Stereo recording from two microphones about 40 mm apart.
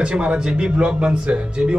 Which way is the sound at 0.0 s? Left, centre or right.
Right.